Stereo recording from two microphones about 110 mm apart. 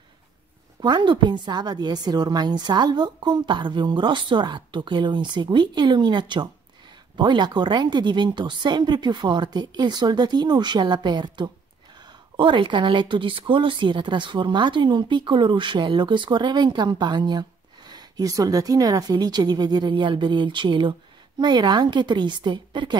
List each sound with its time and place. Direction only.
0.7 s speech: 40° right (ahead or behind)